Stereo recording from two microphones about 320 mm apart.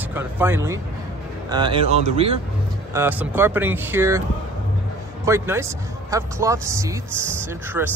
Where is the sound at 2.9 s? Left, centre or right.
Centre.